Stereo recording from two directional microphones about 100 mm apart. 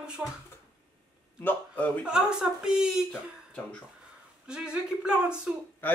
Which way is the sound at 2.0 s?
10° right (ahead or behind).